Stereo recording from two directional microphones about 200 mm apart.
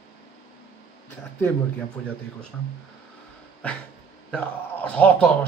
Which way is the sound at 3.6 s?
5° left (ahead or behind).